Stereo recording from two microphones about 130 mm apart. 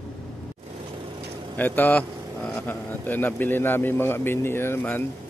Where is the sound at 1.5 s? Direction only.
15° left (ahead or behind).